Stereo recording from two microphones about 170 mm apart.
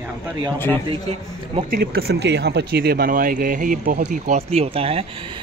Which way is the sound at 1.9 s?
75° right (ahead or behind).